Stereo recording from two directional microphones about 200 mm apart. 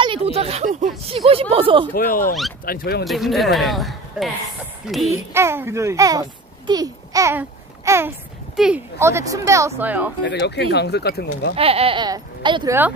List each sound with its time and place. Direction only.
0.0 s speech: 30° right (ahead or behind)
2.0 s speech: 45° left (ahead or behind)
3.1 s speech: centre (ahead or behind)
5.1 s a child's voice: 15° right (ahead or behind)
10.2 s speech: 60° left (ahead or behind)
11.5 s speech: 30° right (ahead or behind)